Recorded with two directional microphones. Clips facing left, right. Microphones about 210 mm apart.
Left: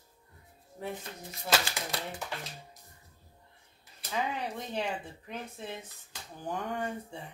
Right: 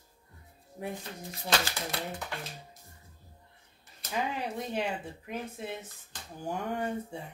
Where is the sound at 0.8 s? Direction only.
15° right (ahead or behind).